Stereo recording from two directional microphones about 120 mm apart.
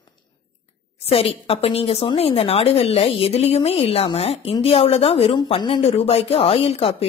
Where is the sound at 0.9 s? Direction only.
55° left (ahead or behind).